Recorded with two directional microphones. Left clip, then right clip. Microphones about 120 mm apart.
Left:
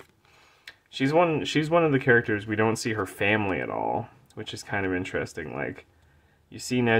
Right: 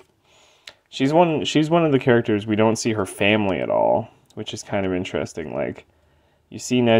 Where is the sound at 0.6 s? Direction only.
40° right (ahead or behind).